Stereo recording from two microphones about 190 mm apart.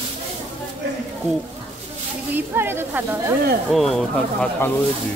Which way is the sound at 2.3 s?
10° right (ahead or behind).